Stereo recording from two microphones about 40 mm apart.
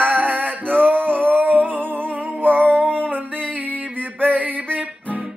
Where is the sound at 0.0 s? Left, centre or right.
Right.